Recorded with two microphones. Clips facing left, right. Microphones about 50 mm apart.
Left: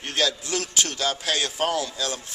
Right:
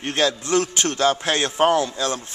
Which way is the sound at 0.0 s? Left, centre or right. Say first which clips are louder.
Right 4 dB; right.